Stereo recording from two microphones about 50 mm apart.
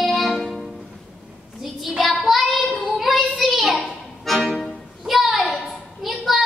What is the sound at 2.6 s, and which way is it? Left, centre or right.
Child singing, centre.